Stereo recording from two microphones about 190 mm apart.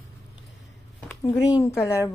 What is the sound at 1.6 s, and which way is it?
Speech, 15° left (ahead or behind).